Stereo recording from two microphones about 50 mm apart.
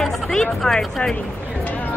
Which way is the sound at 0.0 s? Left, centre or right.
Centre.